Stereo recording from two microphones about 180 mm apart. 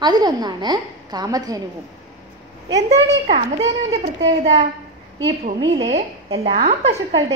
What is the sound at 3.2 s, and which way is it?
Speech, 40° right (ahead or behind).